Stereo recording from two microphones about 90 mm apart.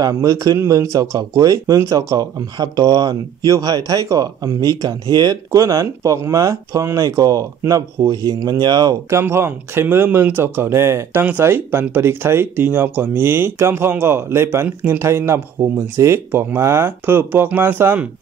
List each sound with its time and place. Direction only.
0.1 s speech: 35° right (ahead or behind)
9.1 s speech: 30° right (ahead or behind)